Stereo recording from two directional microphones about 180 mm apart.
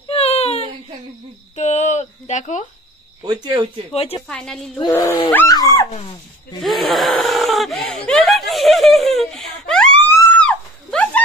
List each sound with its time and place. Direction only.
0.1 s baby cry: 35° left (ahead or behind)
1.5 s a sound: 40° left (ahead or behind)
3.2 s speech: 25° right (ahead or behind)
3.9 s speech: 35° left (ahead or behind)
4.3 s a woman's voice: 5° left (ahead or behind)
5.3 s speech: 15° left (ahead or behind)
5.9 s speech: 35° left (ahead or behind)
6.6 s a sound: centre (ahead or behind)